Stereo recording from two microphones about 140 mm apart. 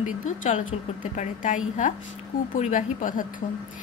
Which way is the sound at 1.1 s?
60° left (ahead or behind).